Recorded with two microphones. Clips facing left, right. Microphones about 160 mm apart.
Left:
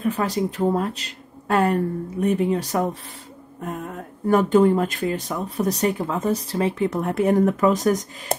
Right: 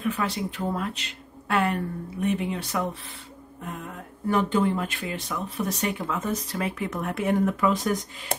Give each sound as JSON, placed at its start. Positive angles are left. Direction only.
{"t": 0.0, "sound": "speech", "side_deg": 40}